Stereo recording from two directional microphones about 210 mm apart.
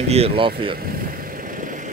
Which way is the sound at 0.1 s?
25° right (ahead or behind).